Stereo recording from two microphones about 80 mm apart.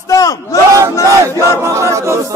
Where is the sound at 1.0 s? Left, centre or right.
Right.